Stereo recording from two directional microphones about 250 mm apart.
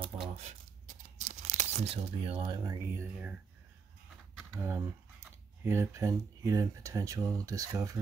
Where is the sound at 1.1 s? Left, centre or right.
Right; by 3.3 s centre.